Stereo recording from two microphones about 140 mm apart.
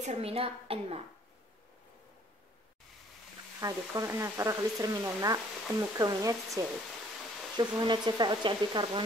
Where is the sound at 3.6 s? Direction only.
20° right (ahead or behind).